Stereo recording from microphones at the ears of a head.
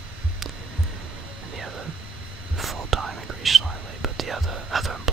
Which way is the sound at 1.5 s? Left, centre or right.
Right.